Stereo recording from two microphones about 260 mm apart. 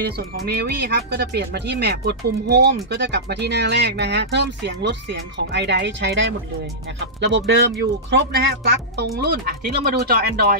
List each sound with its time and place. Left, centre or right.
0.0 s speech: right